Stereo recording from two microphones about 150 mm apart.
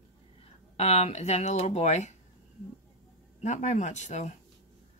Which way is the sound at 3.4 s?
50° left (ahead or behind).